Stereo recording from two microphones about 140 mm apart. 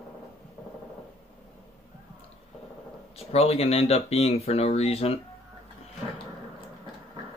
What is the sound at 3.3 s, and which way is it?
Speech, 45° left (ahead or behind).